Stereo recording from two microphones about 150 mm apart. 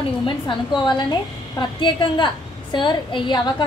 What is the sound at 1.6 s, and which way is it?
A woman's voice, 30° left (ahead or behind).